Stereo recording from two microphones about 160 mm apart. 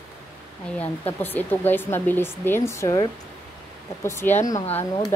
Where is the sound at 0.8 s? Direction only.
10° left (ahead or behind).